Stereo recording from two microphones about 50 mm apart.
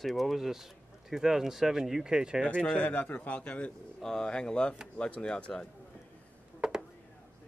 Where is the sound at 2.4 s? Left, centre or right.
Left.